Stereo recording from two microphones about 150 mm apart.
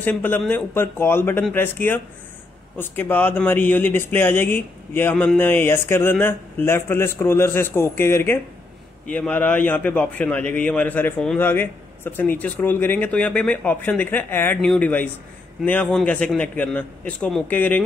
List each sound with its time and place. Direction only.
0.0 s a man's voice: 10° left (ahead or behind)
5.1 s speech: centre (ahead or behind)
5.4 s a man's voice: 15° left (ahead or behind)